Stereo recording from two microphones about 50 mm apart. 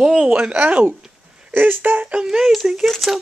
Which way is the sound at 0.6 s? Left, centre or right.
Right.